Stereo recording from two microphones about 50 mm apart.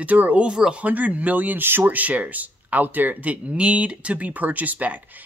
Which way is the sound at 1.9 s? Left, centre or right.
Right.